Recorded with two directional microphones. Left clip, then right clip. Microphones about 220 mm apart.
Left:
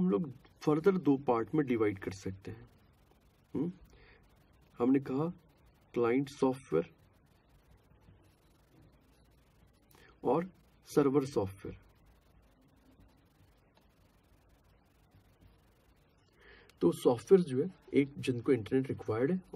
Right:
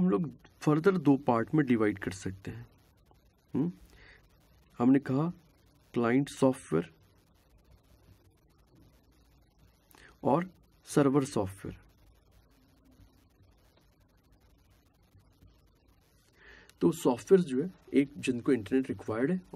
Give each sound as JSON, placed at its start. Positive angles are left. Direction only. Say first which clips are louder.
{"t": 0.0, "sound": "speech", "louder": "right 3 dB", "side_deg": -40}
{"t": 3.5, "sound": "a sound", "louder": "right 4 dB", "side_deg": -40}
{"t": 4.7, "sound": "speech", "louder": "right 3 dB", "side_deg": -40}
{"t": 9.9, "sound": "speech", "louder": "right 3 dB", "side_deg": -40}
{"t": 16.3, "sound": "speech", "louder": "right 2 dB", "side_deg": -35}